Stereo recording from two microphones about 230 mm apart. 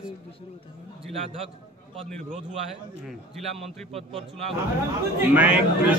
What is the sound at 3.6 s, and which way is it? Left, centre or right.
Speech, right.